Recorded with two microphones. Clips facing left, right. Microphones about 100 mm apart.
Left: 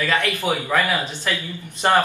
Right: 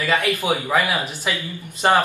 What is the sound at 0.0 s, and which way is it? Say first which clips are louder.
Speech: right 1 dB; 10° right (ahead or behind).